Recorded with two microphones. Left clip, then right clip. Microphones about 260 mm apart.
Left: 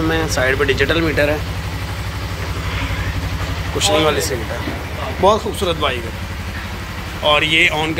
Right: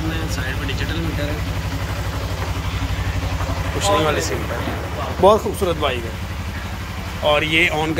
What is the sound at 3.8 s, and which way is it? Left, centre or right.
Speech, centre.